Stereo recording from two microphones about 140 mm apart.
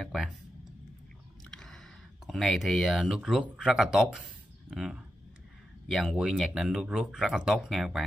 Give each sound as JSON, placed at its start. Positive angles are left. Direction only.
{"t": 0.0, "sound": "speech", "side_deg": -5}
{"t": 1.5, "sound": "a sound", "side_deg": 5}
{"t": 2.2, "sound": "speech", "side_deg": 0}